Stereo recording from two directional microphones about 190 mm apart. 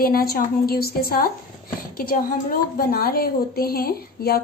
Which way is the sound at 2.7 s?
50° left (ahead or behind).